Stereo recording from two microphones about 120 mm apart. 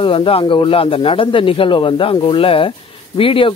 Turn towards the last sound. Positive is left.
turn(degrees=50)  # may be behind; listen again after turning